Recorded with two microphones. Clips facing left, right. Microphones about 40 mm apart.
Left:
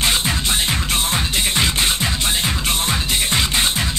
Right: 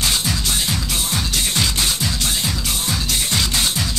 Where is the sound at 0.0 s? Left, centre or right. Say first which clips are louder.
Left 2 dB; left.